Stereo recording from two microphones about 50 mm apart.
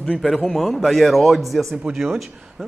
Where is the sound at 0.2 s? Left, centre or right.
Centre.